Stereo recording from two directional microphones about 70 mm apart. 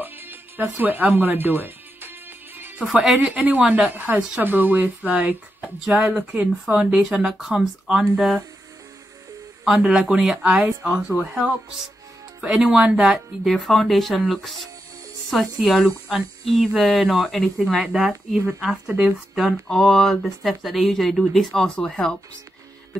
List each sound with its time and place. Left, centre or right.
0.0 s music: right
2.8 s speech: centre
3.2 s speech: right
9.7 s speech: centre